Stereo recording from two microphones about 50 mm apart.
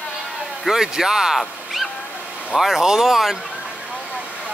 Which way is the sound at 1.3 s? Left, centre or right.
Centre.